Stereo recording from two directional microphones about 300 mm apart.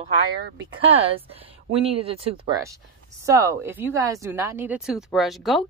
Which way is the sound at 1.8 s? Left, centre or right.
Centre.